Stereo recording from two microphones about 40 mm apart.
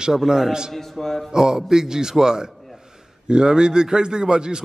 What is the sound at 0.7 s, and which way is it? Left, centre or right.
Speech, centre.